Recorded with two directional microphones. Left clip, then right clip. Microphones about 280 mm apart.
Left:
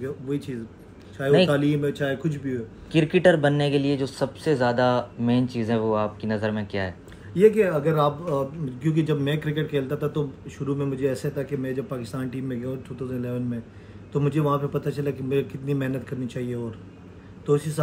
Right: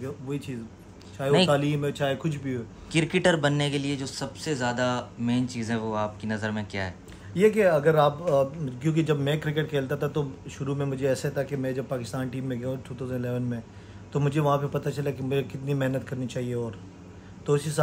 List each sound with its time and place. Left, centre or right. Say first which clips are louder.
0.0 s a man's voice: left 4 dB; centre
3.8 s speech: left 7 dB; centre
6.2 s a man's voice: left 4 dB; centre